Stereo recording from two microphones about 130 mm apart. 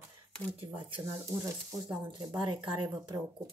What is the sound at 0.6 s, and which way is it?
Speech, 40° right (ahead or behind).